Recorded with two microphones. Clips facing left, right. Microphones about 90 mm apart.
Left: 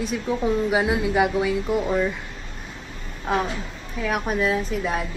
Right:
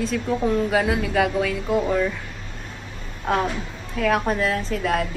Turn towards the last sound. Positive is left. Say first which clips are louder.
# right 2 dB
turn(degrees=5)  # may be behind; listen again after turning